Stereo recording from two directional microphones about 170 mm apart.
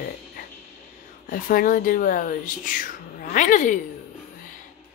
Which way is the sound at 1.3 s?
55° left (ahead or behind).